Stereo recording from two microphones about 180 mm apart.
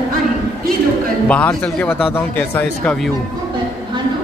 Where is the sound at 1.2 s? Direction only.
5° left (ahead or behind).